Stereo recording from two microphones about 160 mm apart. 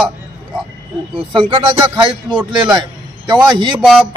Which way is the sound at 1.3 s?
30° right (ahead or behind).